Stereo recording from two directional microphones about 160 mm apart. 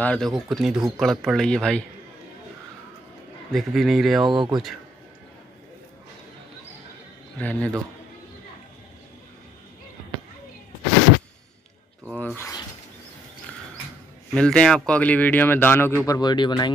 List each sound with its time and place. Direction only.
0.0 s speech: 5° left (ahead or behind)
3.5 s speech: centre (ahead or behind)
4.3 s speech: 30° right (ahead or behind)
7.3 s speech: 10° left (ahead or behind)
12.1 s speech: centre (ahead or behind)
12.4 s speech: 20° left (ahead or behind)
14.3 s speech: 5° left (ahead or behind); by 16.7 s 30° left (ahead or behind)